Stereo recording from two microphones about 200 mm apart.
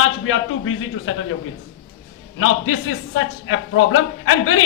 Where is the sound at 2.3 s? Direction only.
90° left.